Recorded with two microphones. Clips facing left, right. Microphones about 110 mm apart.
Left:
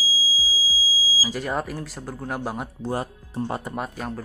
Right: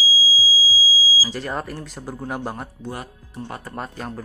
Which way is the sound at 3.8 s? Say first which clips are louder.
Left 1 dB; centre (ahead or behind).